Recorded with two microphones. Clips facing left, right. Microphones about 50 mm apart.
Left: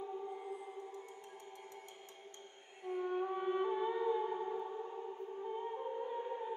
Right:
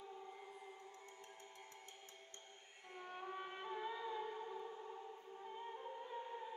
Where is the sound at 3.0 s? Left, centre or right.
Centre.